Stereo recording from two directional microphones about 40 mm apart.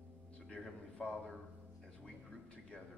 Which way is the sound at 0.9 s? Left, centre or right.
Left.